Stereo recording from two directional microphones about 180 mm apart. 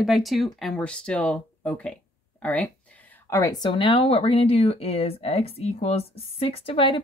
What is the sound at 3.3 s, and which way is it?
Speech, 15° left (ahead or behind).